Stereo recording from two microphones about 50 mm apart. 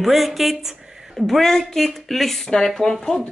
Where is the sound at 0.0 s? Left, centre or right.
Centre.